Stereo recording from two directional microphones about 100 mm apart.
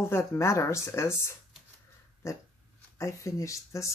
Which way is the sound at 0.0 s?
25° left (ahead or behind).